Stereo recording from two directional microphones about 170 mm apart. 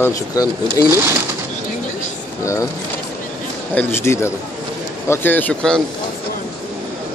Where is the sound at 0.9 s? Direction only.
15° right (ahead or behind).